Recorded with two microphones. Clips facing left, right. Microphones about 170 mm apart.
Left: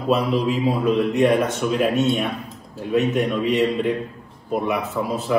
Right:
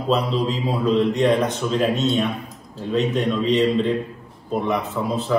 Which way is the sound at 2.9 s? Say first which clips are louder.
Left 1 dB; 15° left (ahead or behind).